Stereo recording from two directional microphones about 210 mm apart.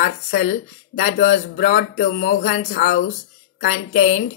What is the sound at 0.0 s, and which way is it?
A woman's voice, 40° left (ahead or behind).